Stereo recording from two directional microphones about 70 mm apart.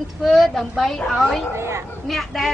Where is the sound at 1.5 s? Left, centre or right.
Right.